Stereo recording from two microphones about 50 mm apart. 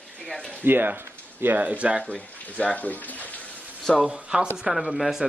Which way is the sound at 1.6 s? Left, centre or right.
Right.